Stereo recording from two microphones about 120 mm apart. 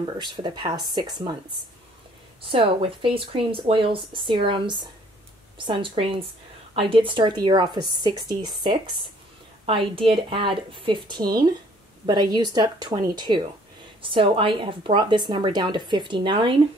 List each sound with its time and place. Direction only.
0.3 s speech: 40° right (ahead or behind)
2.5 s speech: 50° right (ahead or behind)